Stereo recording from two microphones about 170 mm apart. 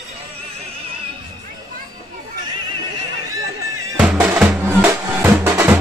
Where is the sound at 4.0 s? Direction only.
5° right (ahead or behind).